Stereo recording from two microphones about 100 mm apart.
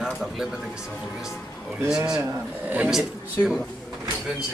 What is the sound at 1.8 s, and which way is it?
A man's voice, 5° right (ahead or behind).